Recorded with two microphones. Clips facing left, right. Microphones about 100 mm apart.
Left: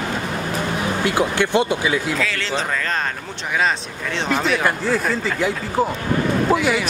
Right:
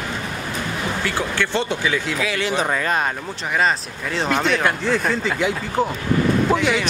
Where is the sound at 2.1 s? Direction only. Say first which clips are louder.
Right 1 dB; 15° right (ahead or behind).